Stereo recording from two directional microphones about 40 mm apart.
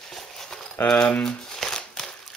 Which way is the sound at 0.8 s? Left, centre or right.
Left.